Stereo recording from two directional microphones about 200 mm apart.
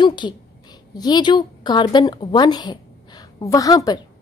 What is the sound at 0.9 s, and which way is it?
A woman's voice, 20° left (ahead or behind).